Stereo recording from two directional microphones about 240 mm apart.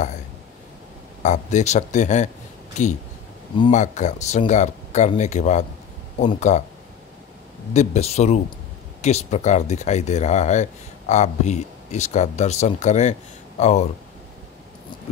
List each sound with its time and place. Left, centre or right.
1.2 s speech: left
3.8 s speech: left
7.7 s speech: left